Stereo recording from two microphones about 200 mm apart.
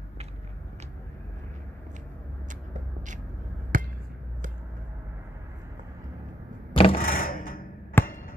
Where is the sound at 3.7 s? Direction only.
45° right (ahead or behind).